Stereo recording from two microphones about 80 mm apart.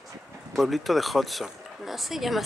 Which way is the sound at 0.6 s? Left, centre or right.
Centre.